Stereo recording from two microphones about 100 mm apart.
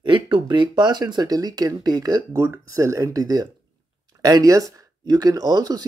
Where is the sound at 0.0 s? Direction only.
50° right (ahead or behind).